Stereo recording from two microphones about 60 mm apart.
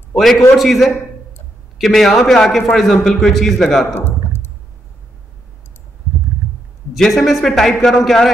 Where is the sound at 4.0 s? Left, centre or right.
Left.